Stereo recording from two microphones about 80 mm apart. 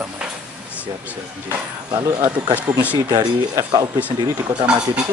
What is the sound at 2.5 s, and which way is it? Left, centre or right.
Speech, centre.